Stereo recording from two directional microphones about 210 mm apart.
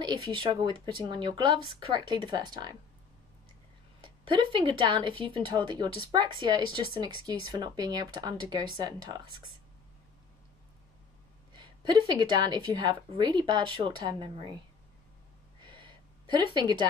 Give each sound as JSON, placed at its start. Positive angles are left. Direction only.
{"t": 0.0, "sound": "speech", "side_deg": -20}
{"t": 4.0, "sound": "speech", "side_deg": -25}
{"t": 11.5, "sound": "speech", "side_deg": -20}
{"t": 15.6, "sound": "a sound", "side_deg": -20}